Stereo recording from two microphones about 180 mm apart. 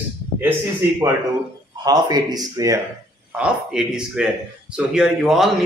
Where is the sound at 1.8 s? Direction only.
20° right (ahead or behind).